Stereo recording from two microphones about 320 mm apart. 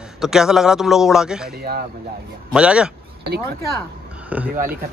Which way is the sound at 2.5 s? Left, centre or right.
Centre.